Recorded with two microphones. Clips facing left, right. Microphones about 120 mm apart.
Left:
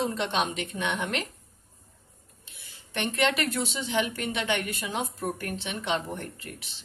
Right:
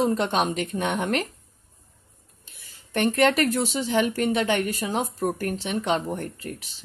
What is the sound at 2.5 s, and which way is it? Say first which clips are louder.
Speech: right 8 dB; 45° right (ahead or behind).